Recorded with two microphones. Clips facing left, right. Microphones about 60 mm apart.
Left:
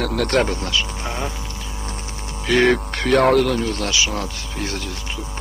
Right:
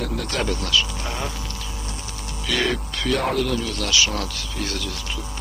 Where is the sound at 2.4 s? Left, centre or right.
Left.